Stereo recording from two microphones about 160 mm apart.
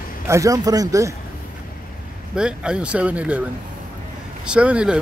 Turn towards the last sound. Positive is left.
turn(degrees=-5)  # may be behind; listen again after turning